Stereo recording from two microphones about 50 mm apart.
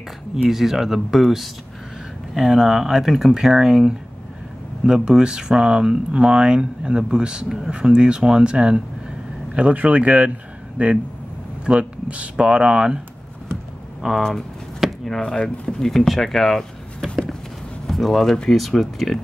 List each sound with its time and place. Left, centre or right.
0.5 s speech: centre
14.0 s speech: centre
15.0 s speech: centre
17.1 s a sound: centre
17.8 s speech: centre